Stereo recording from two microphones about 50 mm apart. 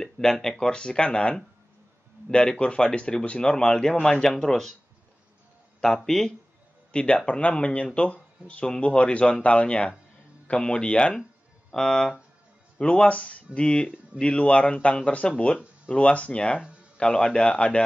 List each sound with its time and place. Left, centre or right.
0.0 s speech: centre
6.0 s speech: centre
6.9 s speech: centre